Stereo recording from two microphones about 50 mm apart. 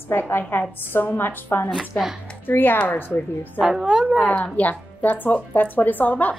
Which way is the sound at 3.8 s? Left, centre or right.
Right.